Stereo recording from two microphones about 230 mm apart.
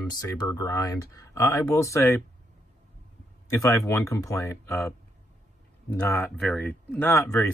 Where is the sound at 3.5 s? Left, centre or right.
Centre.